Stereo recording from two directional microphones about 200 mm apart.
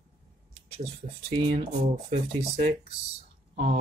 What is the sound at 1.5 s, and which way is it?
Speech, 40° right (ahead or behind).